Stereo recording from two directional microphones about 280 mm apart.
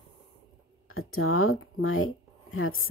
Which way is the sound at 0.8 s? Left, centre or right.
Left.